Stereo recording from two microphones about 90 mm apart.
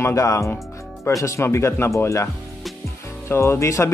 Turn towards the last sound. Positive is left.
turn(degrees=30)  # may be behind; listen again after turning